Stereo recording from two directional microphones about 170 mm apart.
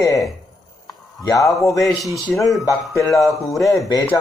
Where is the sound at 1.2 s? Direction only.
20° left (ahead or behind).